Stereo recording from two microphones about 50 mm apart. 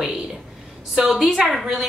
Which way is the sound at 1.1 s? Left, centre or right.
Centre.